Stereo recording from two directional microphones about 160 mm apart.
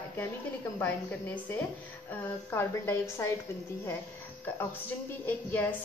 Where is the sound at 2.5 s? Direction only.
15° left (ahead or behind).